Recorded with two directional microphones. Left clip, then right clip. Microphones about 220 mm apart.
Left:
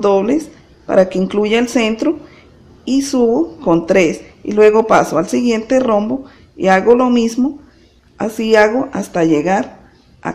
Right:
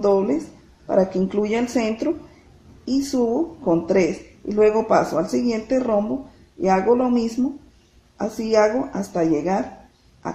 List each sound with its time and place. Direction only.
0.0 s speech: 30° left (ahead or behind)